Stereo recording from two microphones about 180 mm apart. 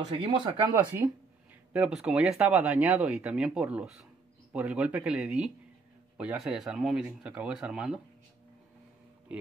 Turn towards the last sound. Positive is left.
turn(degrees=-5)  # may be behind; listen again after turning